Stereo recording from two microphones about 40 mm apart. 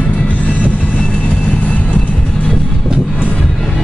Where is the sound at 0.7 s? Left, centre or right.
Left.